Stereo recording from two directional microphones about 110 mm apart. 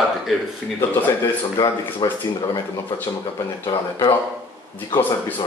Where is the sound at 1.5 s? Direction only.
45° left (ahead or behind).